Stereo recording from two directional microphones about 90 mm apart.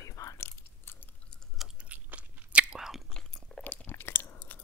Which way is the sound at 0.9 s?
25° left (ahead or behind).